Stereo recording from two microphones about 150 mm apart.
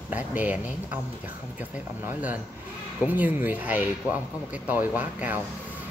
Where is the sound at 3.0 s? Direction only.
10° right (ahead or behind).